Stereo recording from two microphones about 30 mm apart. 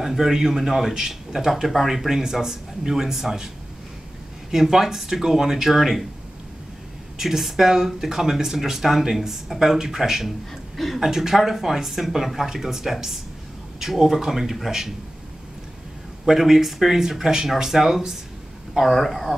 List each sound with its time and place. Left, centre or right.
0.0 s speech: centre
0.3 s speech: centre
4.5 s speech: centre
7.2 s speech: centre
10.5 s speech: centre
11.0 s speech: centre
16.3 s speech: centre